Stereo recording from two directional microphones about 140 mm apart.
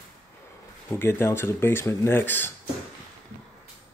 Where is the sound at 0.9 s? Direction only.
15° left (ahead or behind).